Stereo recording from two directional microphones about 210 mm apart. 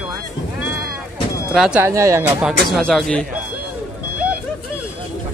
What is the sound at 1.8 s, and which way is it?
Speech, 15° right (ahead or behind).